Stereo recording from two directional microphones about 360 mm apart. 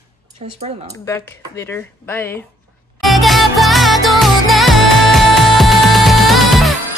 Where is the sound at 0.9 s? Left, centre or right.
Centre.